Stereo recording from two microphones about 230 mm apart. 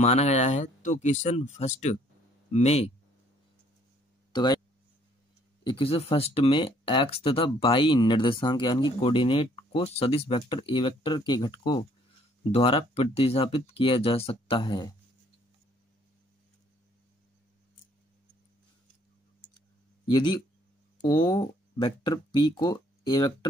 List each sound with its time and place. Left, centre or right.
0.0 s speech: left
4.3 s a sound: centre
5.6 s speech: left
20.1 s speech: left